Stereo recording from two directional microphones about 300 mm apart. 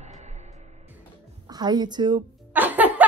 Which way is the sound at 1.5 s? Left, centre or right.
Centre.